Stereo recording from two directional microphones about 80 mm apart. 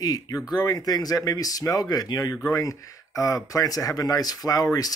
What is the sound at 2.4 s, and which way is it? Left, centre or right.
Speech, left.